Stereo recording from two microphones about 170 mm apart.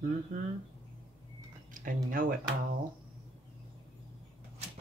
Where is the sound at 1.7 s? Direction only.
50° right (ahead or behind).